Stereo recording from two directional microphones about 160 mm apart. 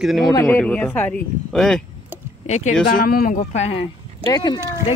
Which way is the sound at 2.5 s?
45° left (ahead or behind).